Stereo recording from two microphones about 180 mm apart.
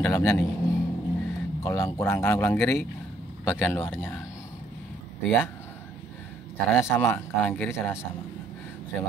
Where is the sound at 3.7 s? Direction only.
10° left (ahead or behind).